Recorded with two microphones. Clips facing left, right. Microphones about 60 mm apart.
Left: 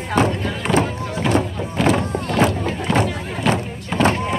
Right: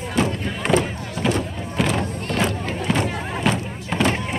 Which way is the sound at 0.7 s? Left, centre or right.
Centre.